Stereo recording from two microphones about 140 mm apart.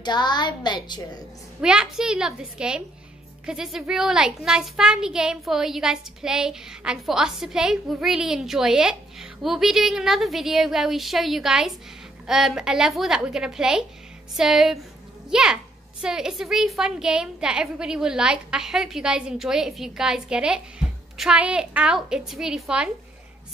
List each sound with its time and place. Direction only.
0.0 s a woman's voice: 30° left (ahead or behind)
1.6 s a child's voice: 5° right (ahead or behind)